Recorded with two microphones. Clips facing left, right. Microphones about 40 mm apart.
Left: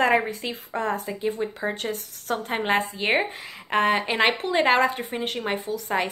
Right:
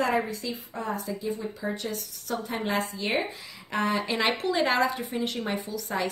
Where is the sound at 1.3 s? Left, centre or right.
Left.